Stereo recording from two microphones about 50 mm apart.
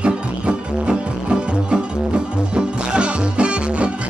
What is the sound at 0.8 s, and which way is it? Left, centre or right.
Music, centre.